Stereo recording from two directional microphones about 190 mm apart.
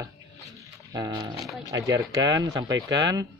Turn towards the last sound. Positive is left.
turn(degrees=-20)  # may be behind; listen again after turning